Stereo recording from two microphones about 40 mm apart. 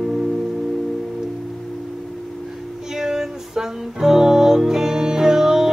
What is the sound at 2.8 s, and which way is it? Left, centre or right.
Music, centre.